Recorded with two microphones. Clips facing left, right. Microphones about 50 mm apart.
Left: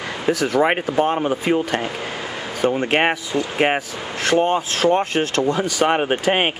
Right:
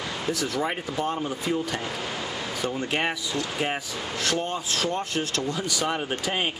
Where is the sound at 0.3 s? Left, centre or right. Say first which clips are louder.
Left 11 dB; left.